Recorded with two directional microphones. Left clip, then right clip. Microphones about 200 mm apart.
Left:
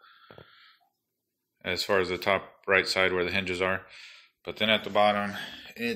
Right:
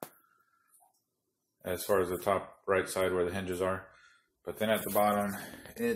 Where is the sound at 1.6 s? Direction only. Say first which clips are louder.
Left 4 dB; 15° left (ahead or behind).